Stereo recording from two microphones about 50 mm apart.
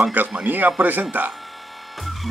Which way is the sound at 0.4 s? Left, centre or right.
Right.